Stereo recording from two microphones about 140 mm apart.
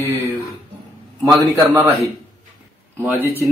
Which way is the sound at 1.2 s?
25° right (ahead or behind).